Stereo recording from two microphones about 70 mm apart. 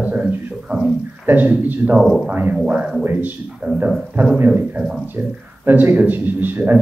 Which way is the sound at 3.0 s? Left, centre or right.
Right.